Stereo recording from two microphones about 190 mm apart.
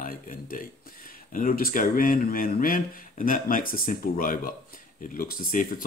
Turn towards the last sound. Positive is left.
turn(degrees=50)  # may be behind; listen again after turning